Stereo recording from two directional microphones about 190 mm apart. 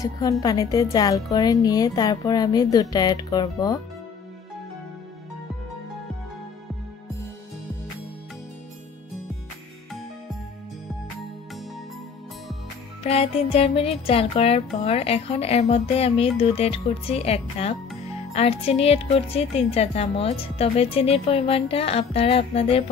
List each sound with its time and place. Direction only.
0.0 s a woman's voice: 20° left (ahead or behind)
13.0 s speech: 30° left (ahead or behind)